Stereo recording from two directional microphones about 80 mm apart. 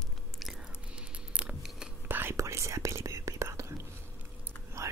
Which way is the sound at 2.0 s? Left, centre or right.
Right.